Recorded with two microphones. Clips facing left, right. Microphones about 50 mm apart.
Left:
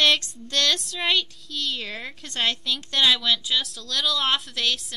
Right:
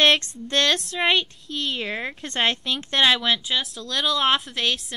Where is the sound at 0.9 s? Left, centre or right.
Right.